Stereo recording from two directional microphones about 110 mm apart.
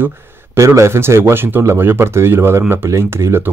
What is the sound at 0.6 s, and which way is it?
Speech, 25° right (ahead or behind).